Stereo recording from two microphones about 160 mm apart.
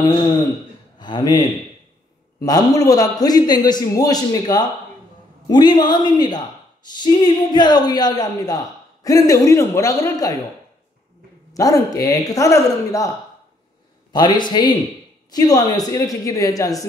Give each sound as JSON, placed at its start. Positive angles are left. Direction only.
{"t": 0.0, "sound": "a man's voice", "side_deg": 25}
{"t": 11.5, "sound": "speech", "side_deg": 20}
{"t": 14.1, "sound": "speech", "side_deg": 25}